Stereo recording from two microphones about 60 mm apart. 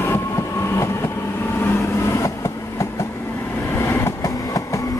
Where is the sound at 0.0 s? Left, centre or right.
Left.